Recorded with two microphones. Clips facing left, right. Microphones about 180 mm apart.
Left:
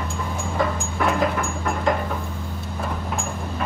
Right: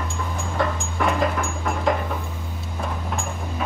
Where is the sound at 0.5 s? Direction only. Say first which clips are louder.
Even; centre (ahead or behind).